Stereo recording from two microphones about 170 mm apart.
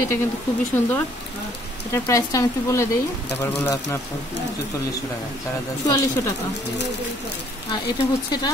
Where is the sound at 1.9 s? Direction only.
20° left (ahead or behind).